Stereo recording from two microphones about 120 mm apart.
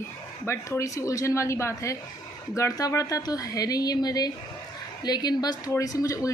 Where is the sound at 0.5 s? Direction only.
25° left (ahead or behind).